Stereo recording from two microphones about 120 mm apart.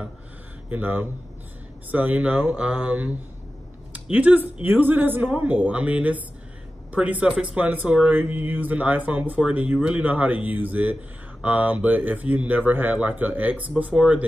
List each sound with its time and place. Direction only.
0.7 s speech: 15° right (ahead or behind)
3.9 s a sound: 15° right (ahead or behind)
4.6 s speech: 15° right (ahead or behind)